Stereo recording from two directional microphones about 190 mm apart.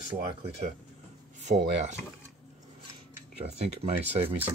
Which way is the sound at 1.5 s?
50° right (ahead or behind).